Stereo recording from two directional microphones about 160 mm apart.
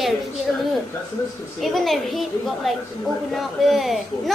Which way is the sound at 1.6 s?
Centre (ahead or behind).